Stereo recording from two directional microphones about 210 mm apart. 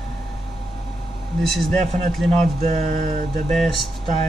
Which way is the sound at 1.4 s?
Centre (ahead or behind).